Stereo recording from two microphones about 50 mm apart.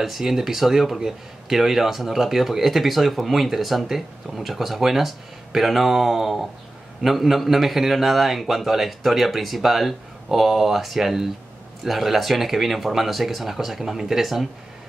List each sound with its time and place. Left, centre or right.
0.0 s speech: centre